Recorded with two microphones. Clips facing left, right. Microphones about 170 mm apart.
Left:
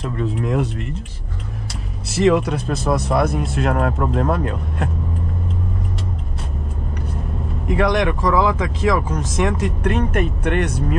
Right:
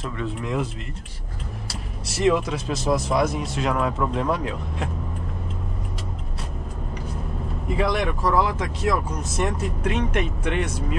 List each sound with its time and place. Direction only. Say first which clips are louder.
0.0 s speech: left 5 dB; centre (ahead or behind)
2.1 s speech: left 5 dB; centre (ahead or behind)
2.4 s speech: left 3 dB; 55° left (ahead or behind)
7.6 s speech: left 5 dB; 75° left (ahead or behind)
8.2 s speech: left 4 dB; 90° left
9.8 s speech: left 4 dB; 50° left (ahead or behind)